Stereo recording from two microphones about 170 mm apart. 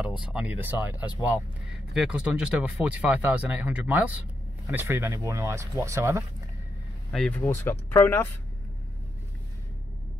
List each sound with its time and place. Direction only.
0.0 s speech: 5° right (ahead or behind)
7.1 s speech: 5° left (ahead or behind)